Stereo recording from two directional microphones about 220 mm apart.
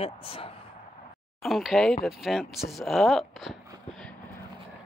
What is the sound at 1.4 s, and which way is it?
Speech, centre (ahead or behind).